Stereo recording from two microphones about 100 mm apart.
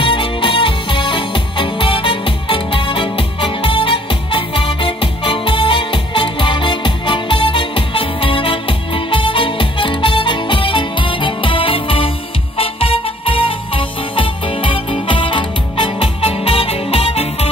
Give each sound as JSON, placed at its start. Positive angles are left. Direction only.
{"t": 0.0, "sound": "music", "side_deg": 60}